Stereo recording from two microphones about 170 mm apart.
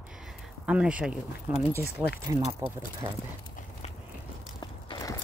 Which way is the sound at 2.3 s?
20° right (ahead or behind).